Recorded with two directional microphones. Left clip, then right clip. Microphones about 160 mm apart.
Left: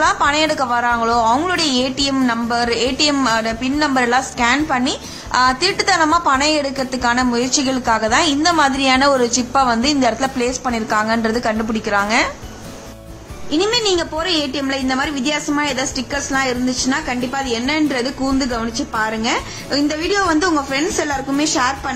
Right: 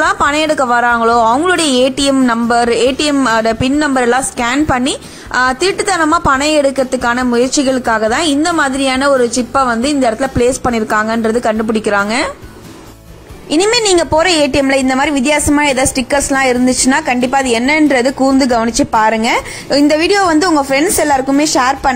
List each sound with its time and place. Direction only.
0.0 s a woman's voice: 30° right (ahead or behind)
13.5 s a woman's voice: 45° right (ahead or behind)